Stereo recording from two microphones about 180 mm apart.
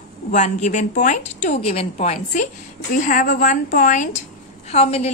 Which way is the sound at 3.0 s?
50° left (ahead or behind).